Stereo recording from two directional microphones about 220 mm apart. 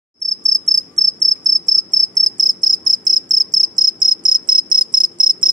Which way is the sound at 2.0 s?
20° right (ahead or behind).